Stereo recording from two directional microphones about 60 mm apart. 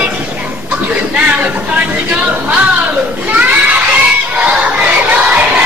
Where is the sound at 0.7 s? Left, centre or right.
Right.